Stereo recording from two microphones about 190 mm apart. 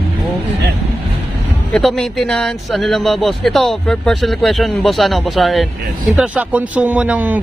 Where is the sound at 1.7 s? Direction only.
5° left (ahead or behind).